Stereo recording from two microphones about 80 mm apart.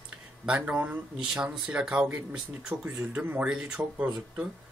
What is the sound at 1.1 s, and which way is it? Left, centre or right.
Speech, centre.